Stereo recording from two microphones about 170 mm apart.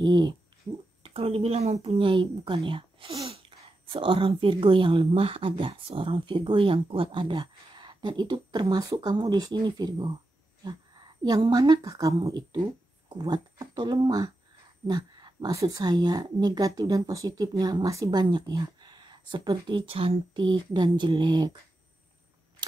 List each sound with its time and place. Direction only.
0.0 s a woman's voice: 25° right (ahead or behind)